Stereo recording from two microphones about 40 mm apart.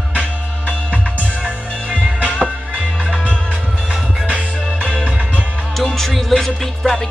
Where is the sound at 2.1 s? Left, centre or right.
Right.